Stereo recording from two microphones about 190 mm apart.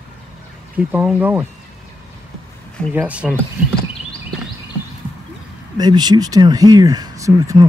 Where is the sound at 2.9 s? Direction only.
5° right (ahead or behind).